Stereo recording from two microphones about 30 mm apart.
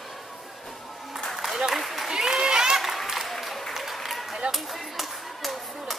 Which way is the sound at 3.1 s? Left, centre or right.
Centre.